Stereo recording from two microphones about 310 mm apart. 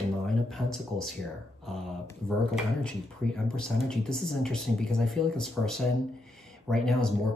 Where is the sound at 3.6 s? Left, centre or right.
Centre.